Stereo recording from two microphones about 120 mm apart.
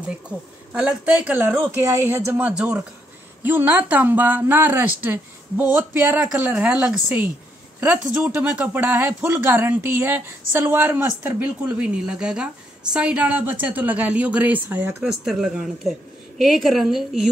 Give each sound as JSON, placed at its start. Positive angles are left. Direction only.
{"t": 0.7, "sound": "speech", "side_deg": -10}
{"t": 15.0, "sound": "a woman's voice", "side_deg": -5}